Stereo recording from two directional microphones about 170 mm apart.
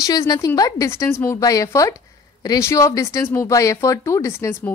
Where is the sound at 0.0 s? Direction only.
20° left (ahead or behind).